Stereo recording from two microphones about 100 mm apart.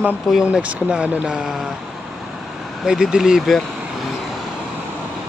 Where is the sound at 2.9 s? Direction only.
5° right (ahead or behind).